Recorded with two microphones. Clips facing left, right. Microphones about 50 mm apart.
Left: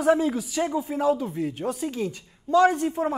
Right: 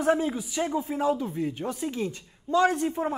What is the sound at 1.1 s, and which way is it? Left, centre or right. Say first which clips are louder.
Speech: left 2 dB; left.